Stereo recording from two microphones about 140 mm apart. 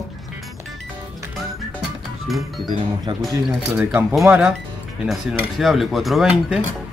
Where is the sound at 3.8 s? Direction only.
5° right (ahead or behind).